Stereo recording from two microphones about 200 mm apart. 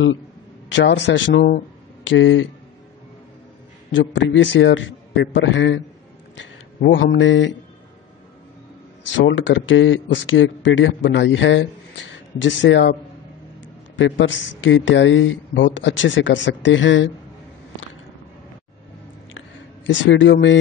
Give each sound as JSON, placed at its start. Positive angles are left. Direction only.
{"t": 0.7, "sound": "a man's voice", "side_deg": 60}
{"t": 3.9, "sound": "a man's voice", "side_deg": 65}
{"t": 9.1, "sound": "speech", "side_deg": 70}
{"t": 13.9, "sound": "speech", "side_deg": 70}
{"t": 19.9, "sound": "a man's voice", "side_deg": 65}